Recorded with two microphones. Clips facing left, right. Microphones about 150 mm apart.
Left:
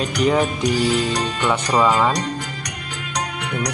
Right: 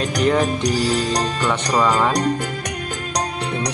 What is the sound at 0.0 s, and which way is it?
Music, centre (ahead or behind).